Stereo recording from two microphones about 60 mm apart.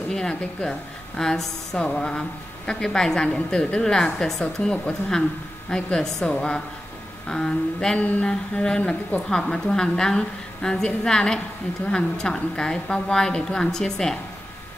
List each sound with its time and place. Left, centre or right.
0.1 s a woman's voice: centre
8.0 s a woman's voice: left